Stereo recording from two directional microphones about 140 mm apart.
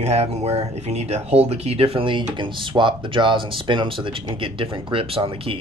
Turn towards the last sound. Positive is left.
turn(degrees=-40)  # may be behind; listen again after turning